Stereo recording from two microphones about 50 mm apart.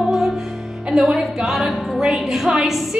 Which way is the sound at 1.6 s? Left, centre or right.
Centre.